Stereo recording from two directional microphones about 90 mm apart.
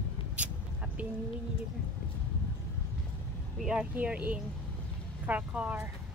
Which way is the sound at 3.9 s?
15° right (ahead or behind).